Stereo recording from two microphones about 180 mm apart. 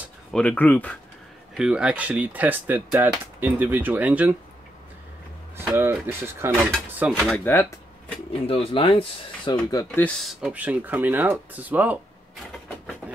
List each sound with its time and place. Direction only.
0.3 s speech: 5° left (ahead or behind)
1.6 s speech: 5° right (ahead or behind)
5.6 s speech: 10° right (ahead or behind)
7.3 s speech: 10° left (ahead or behind)
8.3 s speech: 30° left (ahead or behind)
9.8 s speech: 5° left (ahead or behind); by 12.0 s 10° right (ahead or behind)